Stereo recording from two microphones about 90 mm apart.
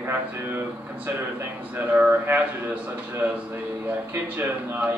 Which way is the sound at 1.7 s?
20° right (ahead or behind).